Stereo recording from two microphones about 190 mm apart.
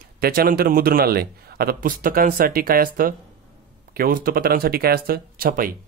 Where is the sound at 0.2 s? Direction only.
50° right (ahead or behind).